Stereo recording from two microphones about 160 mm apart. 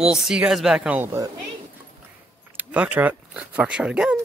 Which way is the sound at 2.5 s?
10° right (ahead or behind).